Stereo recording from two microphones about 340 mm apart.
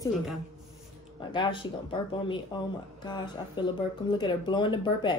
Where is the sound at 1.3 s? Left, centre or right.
Centre.